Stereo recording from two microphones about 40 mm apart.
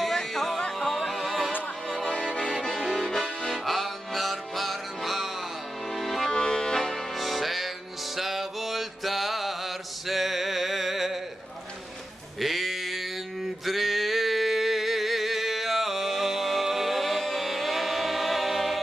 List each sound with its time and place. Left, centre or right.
0.0 s music: centre
2.7 s accordion: centre
3.4 s music: centre
5.9 s accordion: centre
6.4 s accordion: centre
7.2 s music: centre
8.2 s mantra: centre
12.4 s sheep: centre
13.7 s music: centre